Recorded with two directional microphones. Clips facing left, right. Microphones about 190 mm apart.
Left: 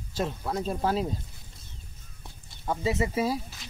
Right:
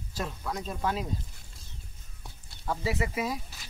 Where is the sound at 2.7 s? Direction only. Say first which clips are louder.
Left 3 dB; 25° left (ahead or behind).